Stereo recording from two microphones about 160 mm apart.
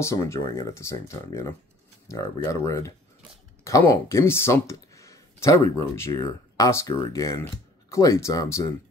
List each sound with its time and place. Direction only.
0.0 s speech: 20° left (ahead or behind)